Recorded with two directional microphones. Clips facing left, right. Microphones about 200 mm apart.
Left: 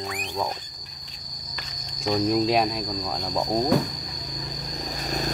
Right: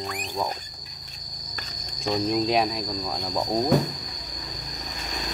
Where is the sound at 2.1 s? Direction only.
Centre (ahead or behind).